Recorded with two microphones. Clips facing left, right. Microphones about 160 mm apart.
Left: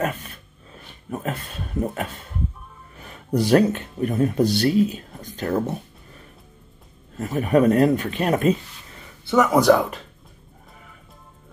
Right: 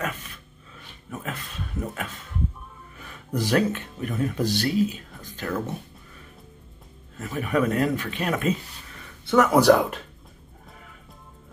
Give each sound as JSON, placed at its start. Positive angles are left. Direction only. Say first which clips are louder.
{"t": 1.1, "sound": "speech", "louder": "left 6 dB", "side_deg": 40}
{"t": 3.3, "sound": "speech", "louder": "left 6 dB", "side_deg": 35}
{"t": 5.1, "sound": "whispering", "louder": "left 5 dB", "side_deg": 25}
{"t": 7.2, "sound": "speech", "louder": "left 6 dB", "side_deg": 35}
{"t": 9.3, "sound": "speech", "louder": "left 1 dB", "side_deg": 0}